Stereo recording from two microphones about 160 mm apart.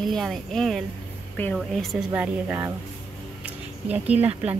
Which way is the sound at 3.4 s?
10° right (ahead or behind).